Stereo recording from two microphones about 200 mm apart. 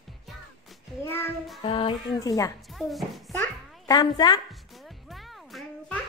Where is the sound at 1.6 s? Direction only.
25° left (ahead or behind).